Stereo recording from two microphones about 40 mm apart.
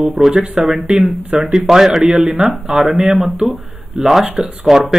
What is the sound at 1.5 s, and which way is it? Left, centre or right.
A man's voice, centre.